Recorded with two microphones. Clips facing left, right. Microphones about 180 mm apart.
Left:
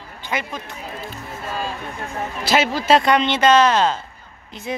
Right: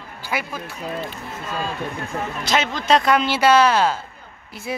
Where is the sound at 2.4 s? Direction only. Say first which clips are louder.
Left 4 dB; 5° left (ahead or behind).